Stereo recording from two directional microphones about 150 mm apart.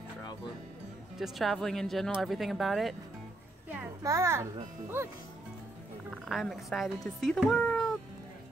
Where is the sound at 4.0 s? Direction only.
20° right (ahead or behind).